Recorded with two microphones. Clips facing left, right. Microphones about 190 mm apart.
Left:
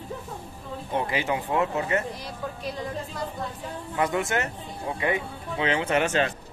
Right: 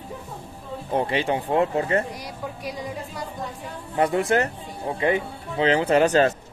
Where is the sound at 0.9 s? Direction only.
35° right (ahead or behind).